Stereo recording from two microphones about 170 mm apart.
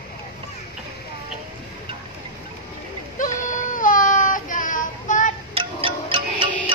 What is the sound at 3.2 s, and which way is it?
Child singing, 50° left (ahead or behind).